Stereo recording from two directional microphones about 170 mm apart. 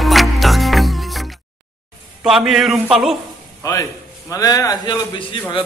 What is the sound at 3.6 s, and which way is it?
A man's voice, 20° left (ahead or behind).